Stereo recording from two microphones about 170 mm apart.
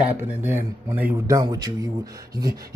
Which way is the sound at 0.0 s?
10° right (ahead or behind).